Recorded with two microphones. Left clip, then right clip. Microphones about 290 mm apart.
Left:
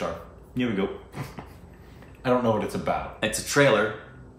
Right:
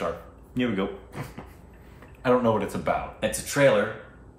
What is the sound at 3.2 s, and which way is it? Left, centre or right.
Speech, centre.